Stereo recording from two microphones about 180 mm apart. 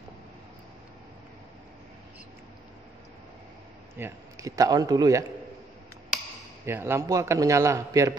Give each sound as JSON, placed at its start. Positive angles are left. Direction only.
{"t": 3.9, "sound": "speech", "side_deg": -15}
{"t": 6.6, "sound": "a man's voice", "side_deg": -15}